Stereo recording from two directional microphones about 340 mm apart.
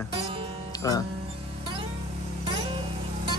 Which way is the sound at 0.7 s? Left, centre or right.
Centre.